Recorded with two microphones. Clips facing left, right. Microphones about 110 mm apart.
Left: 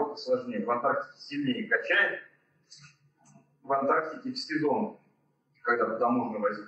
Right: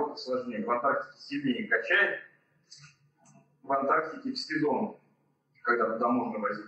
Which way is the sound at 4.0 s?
30° left (ahead or behind).